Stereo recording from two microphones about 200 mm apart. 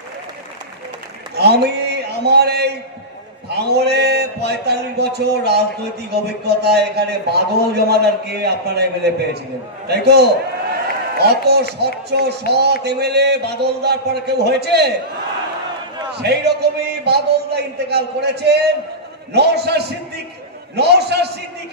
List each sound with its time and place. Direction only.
1.3 s a man's voice: 55° right (ahead or behind)
16.2 s a man's voice: 55° right (ahead or behind)